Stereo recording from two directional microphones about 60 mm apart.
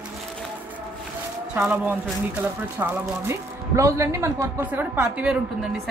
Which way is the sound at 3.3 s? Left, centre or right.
Right.